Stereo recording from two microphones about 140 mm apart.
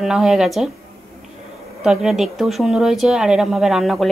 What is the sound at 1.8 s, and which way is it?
Speech, 5° right (ahead or behind).